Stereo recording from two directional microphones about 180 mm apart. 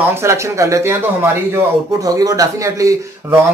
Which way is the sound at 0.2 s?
15° right (ahead or behind).